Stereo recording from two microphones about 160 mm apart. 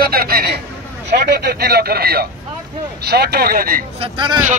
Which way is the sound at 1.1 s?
90° right.